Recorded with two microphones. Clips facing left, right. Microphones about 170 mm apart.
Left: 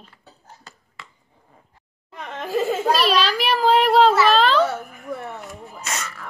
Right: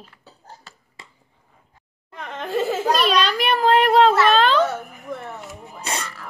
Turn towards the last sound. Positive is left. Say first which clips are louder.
# right 2 dB
turn(degrees=-30)  # may be behind; listen again after turning